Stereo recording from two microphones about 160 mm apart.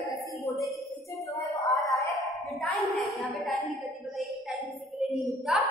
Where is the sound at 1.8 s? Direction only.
Centre (ahead or behind).